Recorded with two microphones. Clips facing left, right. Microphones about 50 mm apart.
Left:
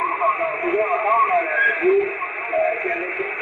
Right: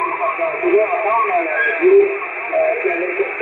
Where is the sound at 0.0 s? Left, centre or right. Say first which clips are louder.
Right 1 dB; centre.